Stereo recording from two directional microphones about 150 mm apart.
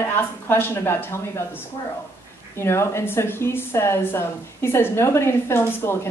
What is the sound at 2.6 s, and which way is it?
Speech, 15° left (ahead or behind).